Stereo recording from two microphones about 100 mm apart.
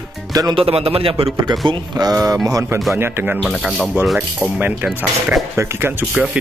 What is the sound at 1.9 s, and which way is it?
Speech, 40° right (ahead or behind).